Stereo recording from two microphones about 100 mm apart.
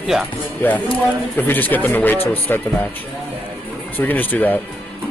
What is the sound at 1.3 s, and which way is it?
Speech, 20° left (ahead or behind).